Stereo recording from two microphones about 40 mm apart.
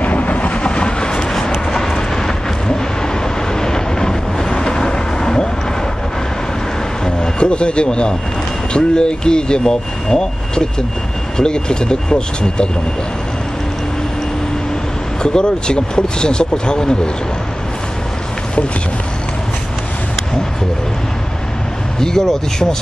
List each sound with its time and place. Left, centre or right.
0.0 s vehicle: left; by 5.5 s centre
7.3 s speech: left
15.2 s speech: left
22.0 s speech: centre